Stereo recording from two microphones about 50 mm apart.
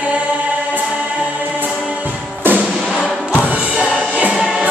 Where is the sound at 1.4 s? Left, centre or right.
Right.